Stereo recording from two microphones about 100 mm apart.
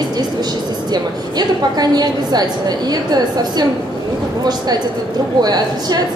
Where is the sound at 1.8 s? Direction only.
45° right (ahead or behind).